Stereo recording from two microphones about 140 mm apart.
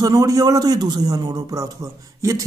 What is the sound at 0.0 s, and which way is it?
A man's voice, 25° right (ahead or behind).